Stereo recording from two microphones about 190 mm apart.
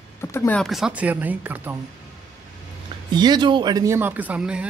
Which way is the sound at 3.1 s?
20° right (ahead or behind).